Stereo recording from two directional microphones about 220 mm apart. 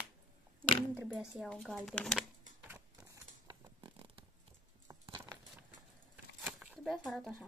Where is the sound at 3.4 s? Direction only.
20° right (ahead or behind); by 7.3 s centre (ahead or behind).